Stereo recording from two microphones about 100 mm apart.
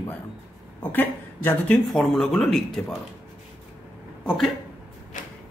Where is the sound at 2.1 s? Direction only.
5° left (ahead or behind).